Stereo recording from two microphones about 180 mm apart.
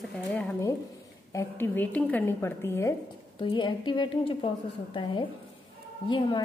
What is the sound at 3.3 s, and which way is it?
A woman's voice, 25° left (ahead or behind).